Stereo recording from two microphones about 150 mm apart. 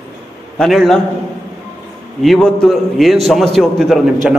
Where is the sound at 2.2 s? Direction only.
5° left (ahead or behind).